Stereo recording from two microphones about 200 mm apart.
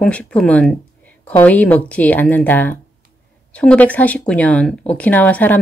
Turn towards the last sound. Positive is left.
turn(degrees=10)  # may be behind; listen again after turning